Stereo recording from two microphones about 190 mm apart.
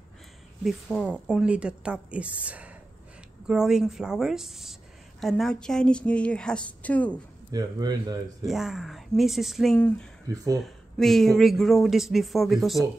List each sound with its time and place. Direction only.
0.9 s a woman's voice: 5° right (ahead or behind)
7.5 s speech: 20° right (ahead or behind)
8.5 s speech: centre (ahead or behind)
10.2 s a woman's voice: 15° right (ahead or behind)
10.6 s speech: centre (ahead or behind)